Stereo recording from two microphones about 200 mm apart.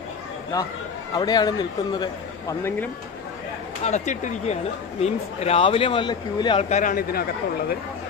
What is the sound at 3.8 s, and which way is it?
A man's voice, 35° left (ahead or behind).